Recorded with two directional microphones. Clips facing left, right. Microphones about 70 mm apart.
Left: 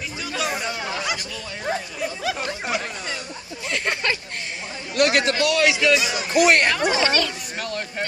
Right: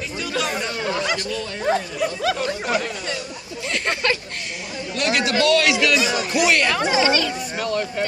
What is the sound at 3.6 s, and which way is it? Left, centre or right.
Speech, centre.